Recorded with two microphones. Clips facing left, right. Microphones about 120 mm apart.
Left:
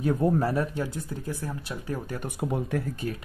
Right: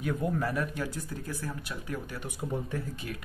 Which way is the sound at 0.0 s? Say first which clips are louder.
Left 6 dB; 35° left (ahead or behind).